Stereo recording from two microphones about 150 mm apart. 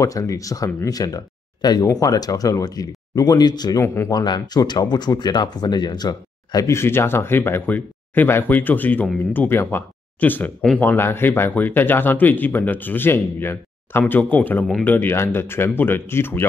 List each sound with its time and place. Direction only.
0.0 s speech: 20° left (ahead or behind)
3.8 s speech: 15° left (ahead or behind)
4.1 s speech: 30° left (ahead or behind); by 15.0 s 5° left (ahead or behind)
15.0 s speech: 15° left (ahead or behind)